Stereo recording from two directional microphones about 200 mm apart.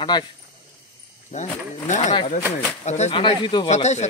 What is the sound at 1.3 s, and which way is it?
Speech, 35° left (ahead or behind).